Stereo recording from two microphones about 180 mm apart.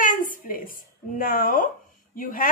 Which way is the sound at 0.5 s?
50° left (ahead or behind).